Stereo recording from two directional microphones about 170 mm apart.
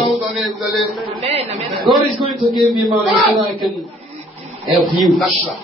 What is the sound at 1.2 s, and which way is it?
Speech, 35° right (ahead or behind).